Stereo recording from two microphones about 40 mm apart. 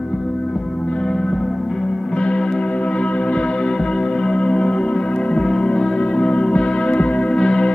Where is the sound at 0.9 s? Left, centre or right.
Left.